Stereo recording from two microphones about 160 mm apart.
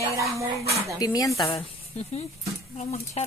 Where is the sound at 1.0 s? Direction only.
25° left (ahead or behind).